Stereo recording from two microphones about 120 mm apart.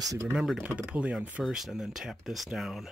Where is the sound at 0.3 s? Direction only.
5° right (ahead or behind).